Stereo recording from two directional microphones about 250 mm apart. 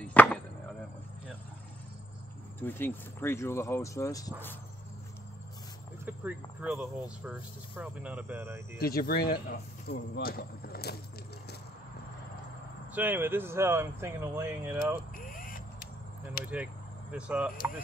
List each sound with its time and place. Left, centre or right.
0.0 s chop: centre
2.6 s speech: centre
6.0 s speech: centre
8.7 s speech: left
12.9 s speech: centre
15.1 s vehicle: left
17.1 s speech: centre